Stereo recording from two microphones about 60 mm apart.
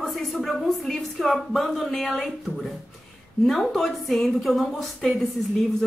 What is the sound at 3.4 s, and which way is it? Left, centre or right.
Speech, centre.